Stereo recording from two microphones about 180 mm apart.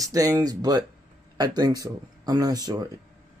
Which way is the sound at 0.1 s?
20° right (ahead or behind).